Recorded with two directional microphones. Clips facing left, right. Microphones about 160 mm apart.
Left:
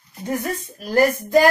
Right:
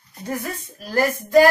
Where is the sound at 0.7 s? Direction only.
15° left (ahead or behind).